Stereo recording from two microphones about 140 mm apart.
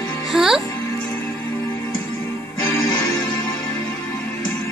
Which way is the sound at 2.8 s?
30° left (ahead or behind).